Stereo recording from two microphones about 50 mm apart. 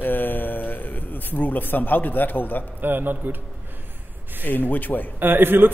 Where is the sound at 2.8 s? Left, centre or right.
Right.